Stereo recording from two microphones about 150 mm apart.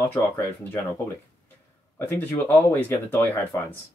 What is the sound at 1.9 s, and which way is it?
Speech, 10° left (ahead or behind).